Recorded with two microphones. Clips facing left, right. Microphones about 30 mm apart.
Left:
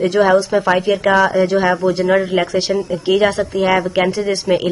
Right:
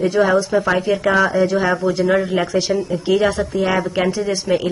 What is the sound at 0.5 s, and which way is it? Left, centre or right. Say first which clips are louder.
Speech: left 2 dB; left.